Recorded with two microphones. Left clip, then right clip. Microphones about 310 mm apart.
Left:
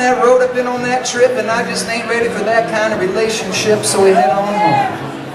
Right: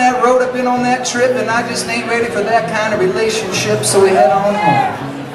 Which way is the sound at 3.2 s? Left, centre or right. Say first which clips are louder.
Even; centre.